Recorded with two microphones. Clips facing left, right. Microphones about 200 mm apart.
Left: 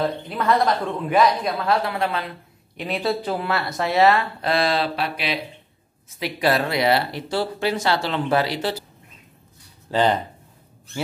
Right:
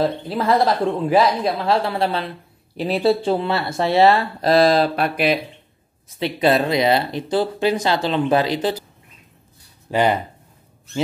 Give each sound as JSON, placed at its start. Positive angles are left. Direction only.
{"t": 0.0, "sound": "speech", "side_deg": -30}
{"t": 6.0, "sound": "speech", "side_deg": -25}
{"t": 9.8, "sound": "speech", "side_deg": -10}